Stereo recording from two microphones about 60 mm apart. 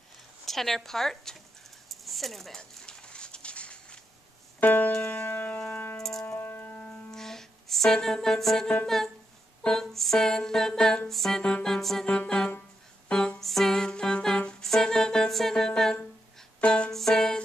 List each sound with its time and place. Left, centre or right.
0.5 s speech: centre
1.9 s a sound: centre
2.9 s a sound: centre
4.6 s keyboard: left
5.2 s music: left
7.1 s music: centre
8.8 s speech: centre
9.6 s music: centre
12.1 s music: centre
13.4 s music: centre